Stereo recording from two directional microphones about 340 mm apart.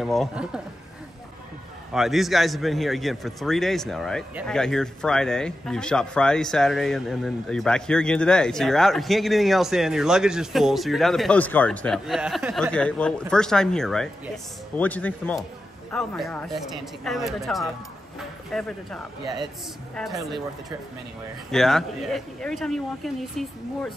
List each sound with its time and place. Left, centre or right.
0.0 s a man's voice: centre
2.0 s a man's voice: centre
21.5 s a man's voice: centre